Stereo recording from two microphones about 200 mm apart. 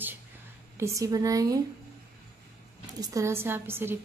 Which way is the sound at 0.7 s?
15° right (ahead or behind).